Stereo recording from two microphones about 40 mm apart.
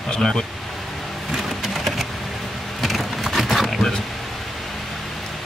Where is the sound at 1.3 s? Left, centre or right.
Centre.